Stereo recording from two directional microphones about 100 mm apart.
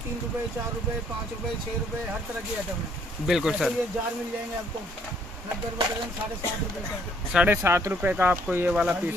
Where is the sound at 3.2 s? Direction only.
5° right (ahead or behind).